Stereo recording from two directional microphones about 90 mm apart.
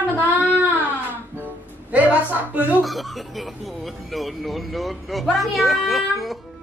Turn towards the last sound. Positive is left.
turn(degrees=0)  # may be behind; listen again after turning